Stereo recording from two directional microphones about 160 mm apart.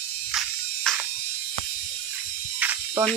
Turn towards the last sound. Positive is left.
turn(degrees=-10)  # may be behind; listen again after turning